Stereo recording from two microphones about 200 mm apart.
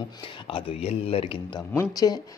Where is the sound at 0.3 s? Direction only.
25° left (ahead or behind).